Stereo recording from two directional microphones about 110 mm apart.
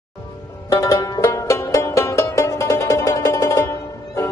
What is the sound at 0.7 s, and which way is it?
Music, 30° left (ahead or behind).